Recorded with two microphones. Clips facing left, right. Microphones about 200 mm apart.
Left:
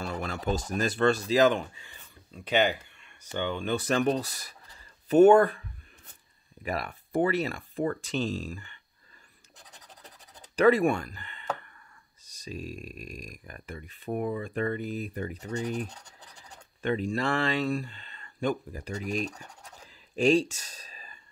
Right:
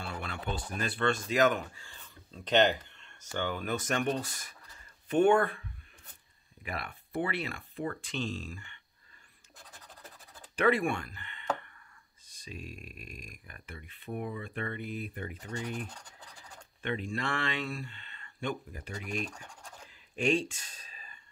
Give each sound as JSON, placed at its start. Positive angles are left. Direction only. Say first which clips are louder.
{"t": 0.0, "sound": "a sound", "louder": "left 6 dB", "side_deg": 40}
{"t": 0.7, "sound": "speech", "louder": "left 6 dB", "side_deg": 40}
{"t": 2.3, "sound": "speech", "louder": "even", "side_deg": 10}
{"t": 6.6, "sound": "speech", "louder": "left 7 dB", "side_deg": 40}
{"t": 10.5, "sound": "speech", "louder": "left 6 dB", "side_deg": 40}